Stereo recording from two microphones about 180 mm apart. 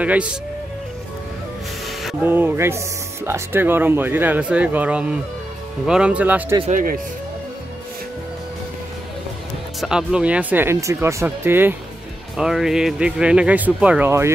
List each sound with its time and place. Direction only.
0.0 s speech: 5° right (ahead or behind)
2.2 s speech: 10° right (ahead or behind)
6.7 s speech: 50° right (ahead or behind)
9.8 s speech: 5° right (ahead or behind)